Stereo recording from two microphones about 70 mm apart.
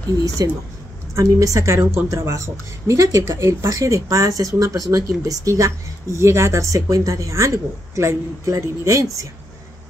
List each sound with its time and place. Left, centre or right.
0.2 s speech: right
6.1 s speech: right